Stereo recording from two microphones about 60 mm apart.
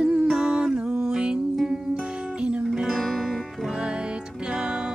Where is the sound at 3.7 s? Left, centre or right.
Centre.